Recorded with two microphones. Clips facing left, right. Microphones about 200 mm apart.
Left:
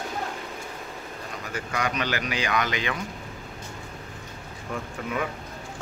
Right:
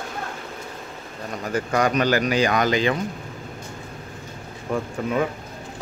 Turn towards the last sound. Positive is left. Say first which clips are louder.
# right 7 dB
turn(degrees=-35)  # may be behind; listen again after turning